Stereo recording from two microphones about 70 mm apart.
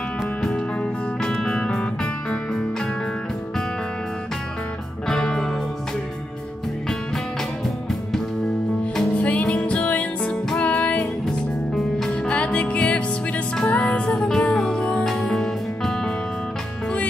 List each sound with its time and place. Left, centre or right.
0.2 s music: centre
5.0 s music: centre
9.1 s music: centre
11.2 s music: centre
12.3 s music: centre